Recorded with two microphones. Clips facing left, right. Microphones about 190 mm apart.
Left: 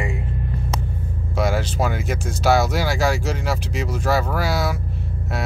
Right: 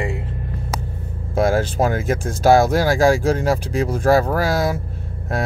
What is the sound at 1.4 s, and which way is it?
Speech, 50° right (ahead or behind).